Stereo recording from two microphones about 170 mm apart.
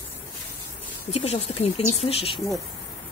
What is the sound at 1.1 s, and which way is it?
A woman's voice, 40° left (ahead or behind).